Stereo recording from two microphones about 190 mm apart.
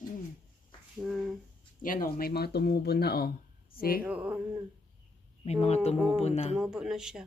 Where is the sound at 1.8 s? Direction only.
45° left (ahead or behind).